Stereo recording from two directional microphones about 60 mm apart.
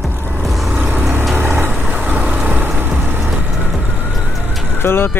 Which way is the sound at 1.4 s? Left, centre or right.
Right.